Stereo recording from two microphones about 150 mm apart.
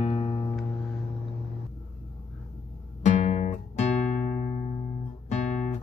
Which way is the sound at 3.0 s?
50° left (ahead or behind).